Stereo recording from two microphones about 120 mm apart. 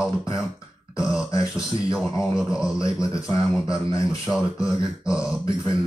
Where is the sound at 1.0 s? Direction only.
5° right (ahead or behind).